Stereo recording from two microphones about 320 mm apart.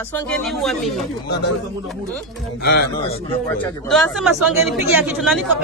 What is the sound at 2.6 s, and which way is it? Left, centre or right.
Speech, left.